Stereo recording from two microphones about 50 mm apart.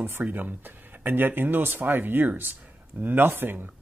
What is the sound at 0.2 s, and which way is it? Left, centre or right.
Speech, right.